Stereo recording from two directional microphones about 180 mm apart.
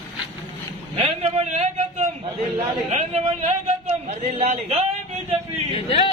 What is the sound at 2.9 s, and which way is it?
A man's voice, 40° right (ahead or behind).